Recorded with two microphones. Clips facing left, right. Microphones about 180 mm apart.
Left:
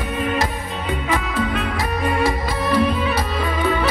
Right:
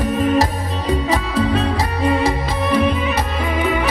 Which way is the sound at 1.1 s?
35° right (ahead or behind).